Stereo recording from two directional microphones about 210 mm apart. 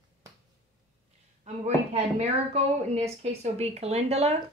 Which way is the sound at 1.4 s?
30° right (ahead or behind).